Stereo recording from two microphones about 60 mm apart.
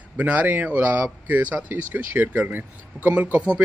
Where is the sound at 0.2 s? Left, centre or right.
Right.